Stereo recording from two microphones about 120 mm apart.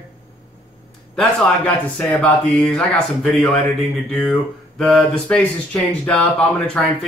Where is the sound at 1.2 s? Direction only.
10° left (ahead or behind).